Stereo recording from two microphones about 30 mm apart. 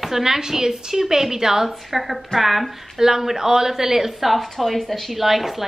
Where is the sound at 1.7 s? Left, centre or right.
Centre.